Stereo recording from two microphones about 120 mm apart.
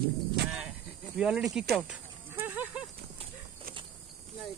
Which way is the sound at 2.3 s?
15° right (ahead or behind).